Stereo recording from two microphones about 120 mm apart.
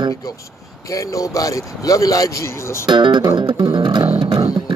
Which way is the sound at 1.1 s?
30° left (ahead or behind).